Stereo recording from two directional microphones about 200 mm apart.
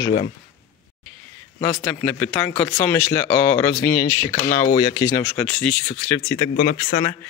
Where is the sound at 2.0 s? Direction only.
5° left (ahead or behind).